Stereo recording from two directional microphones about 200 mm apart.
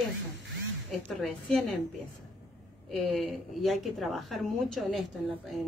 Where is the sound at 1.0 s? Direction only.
5° left (ahead or behind).